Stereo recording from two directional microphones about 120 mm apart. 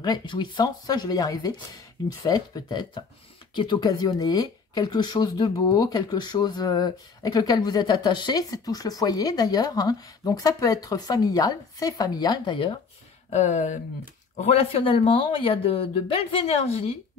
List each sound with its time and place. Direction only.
0.0 s speech: 40° left (ahead or behind)
13.3 s speech: 75° left (ahead or behind)
14.3 s speech: 65° left (ahead or behind)